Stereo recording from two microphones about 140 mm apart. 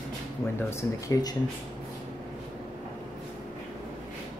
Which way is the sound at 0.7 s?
25° left (ahead or behind).